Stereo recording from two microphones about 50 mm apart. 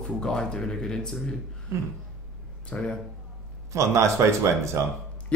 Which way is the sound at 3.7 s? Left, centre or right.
Right.